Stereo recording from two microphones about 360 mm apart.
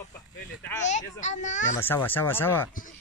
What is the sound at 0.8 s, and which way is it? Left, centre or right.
A child's voice, centre.